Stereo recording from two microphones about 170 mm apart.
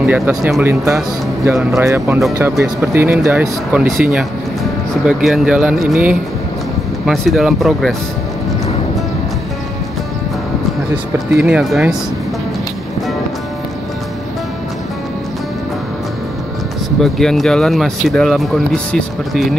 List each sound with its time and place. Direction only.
0.0 s speech: 15° right (ahead or behind)
5.0 s speech: 5° right (ahead or behind)
11.4 s speech: 5° right (ahead or behind)
17.0 s speech: centre (ahead or behind)